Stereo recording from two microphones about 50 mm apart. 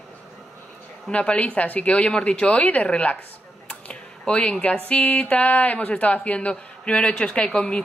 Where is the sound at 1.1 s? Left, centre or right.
Left.